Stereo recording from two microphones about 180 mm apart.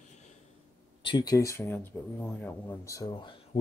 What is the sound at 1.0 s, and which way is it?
Speech, 25° left (ahead or behind).